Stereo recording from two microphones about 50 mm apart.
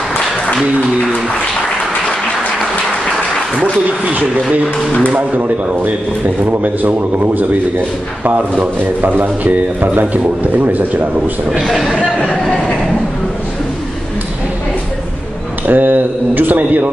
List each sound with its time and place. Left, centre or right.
4.0 s speech: right
11.7 s speech: centre
12.2 s speech: centre
15.6 s speech: right